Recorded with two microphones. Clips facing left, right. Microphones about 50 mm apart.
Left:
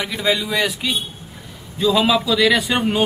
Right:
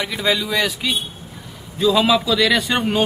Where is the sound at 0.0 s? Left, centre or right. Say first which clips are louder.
Even; centre.